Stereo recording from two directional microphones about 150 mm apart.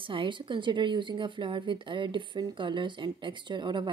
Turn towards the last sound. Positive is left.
turn(degrees=-30)  # may be behind; listen again after turning